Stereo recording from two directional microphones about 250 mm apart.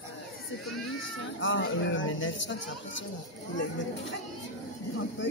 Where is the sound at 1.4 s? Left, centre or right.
Left.